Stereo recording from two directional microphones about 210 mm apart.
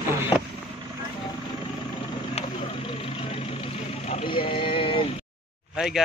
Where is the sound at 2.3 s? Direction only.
25° left (ahead or behind).